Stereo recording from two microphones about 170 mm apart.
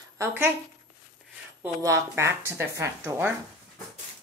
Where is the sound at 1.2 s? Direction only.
Centre (ahead or behind).